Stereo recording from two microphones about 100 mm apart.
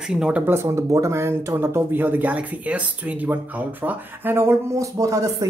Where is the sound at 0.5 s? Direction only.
25° right (ahead or behind).